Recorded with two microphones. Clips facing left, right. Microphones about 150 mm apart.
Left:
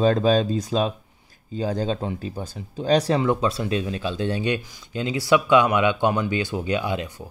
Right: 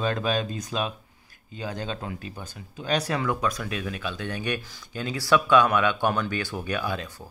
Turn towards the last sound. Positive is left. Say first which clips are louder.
# left 4 dB
turn(degrees=20)  # may be behind; listen again after turning